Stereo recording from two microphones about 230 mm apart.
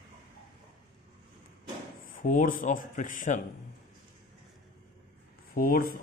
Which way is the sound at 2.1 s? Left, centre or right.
Left.